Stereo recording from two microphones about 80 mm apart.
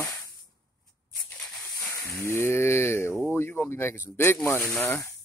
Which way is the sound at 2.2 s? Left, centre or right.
Left.